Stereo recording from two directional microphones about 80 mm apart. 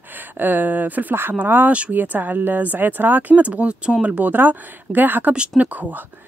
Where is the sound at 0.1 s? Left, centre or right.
Right.